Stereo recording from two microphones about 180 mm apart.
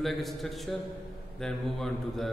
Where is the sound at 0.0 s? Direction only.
Centre (ahead or behind).